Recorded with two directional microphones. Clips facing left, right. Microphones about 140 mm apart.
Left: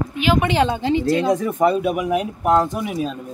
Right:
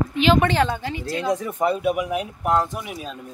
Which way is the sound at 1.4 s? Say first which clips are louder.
Left 4 dB; 60° left (ahead or behind).